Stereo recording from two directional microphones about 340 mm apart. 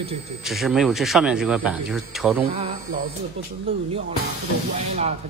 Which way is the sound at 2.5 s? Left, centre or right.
Centre.